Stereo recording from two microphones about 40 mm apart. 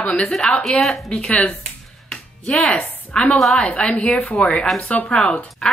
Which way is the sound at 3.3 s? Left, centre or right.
Centre.